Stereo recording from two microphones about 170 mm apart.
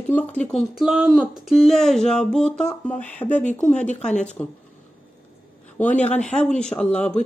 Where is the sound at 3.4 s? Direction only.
45° left (ahead or behind).